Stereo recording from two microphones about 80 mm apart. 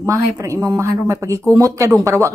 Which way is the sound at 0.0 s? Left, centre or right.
Right.